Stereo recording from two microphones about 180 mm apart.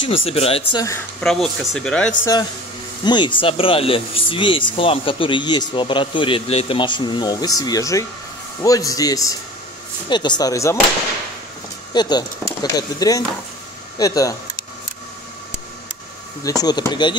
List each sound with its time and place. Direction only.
0.2 s speech: 35° left (ahead or behind)
1.2 s speech: centre (ahead or behind)
3.1 s speech: 25° left (ahead or behind)
11.9 s speech: 25° left (ahead or behind)
16.4 s speech: 20° left (ahead or behind)